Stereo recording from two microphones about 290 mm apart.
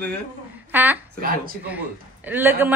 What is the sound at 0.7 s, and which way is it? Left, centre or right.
Speech, centre.